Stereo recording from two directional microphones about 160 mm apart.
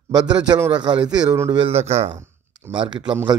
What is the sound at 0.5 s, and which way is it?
Speech, 25° right (ahead or behind).